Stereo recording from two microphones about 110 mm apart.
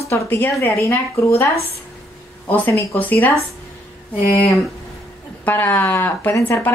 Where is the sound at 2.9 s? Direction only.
15° left (ahead or behind).